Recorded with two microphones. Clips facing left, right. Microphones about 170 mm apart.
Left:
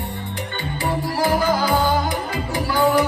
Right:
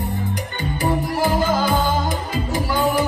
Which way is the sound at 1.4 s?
20° right (ahead or behind).